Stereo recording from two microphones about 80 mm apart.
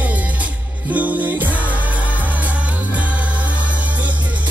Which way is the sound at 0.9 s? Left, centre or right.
Right.